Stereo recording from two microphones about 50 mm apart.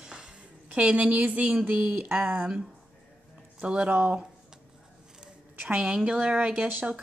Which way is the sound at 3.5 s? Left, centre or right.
Right.